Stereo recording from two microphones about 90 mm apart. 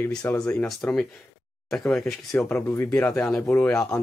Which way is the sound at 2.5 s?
25° left (ahead or behind).